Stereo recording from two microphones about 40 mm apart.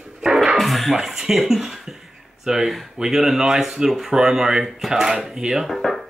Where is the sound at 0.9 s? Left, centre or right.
Centre.